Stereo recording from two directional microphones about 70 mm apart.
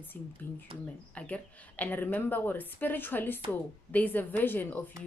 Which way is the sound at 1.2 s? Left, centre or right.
Left.